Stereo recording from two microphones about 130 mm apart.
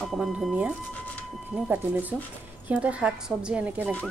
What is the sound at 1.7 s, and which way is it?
Speech, 15° right (ahead or behind).